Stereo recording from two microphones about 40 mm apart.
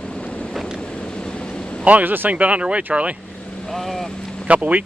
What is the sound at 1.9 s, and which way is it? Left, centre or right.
Speech, right.